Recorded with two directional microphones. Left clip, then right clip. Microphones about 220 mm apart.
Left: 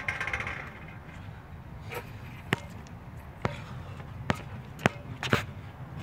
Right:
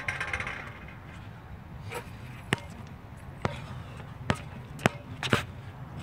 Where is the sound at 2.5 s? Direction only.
15° right (ahead or behind).